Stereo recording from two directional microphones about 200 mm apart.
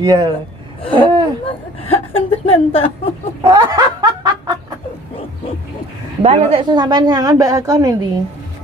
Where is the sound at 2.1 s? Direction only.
25° left (ahead or behind).